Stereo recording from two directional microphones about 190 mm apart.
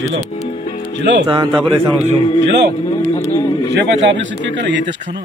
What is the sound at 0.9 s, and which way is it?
Speech, 70° right (ahead or behind).